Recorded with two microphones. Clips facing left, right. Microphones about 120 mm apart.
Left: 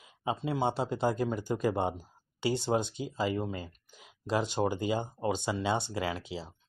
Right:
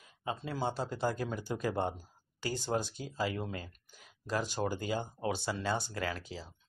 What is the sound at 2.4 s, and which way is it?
Speech, 25° left (ahead or behind).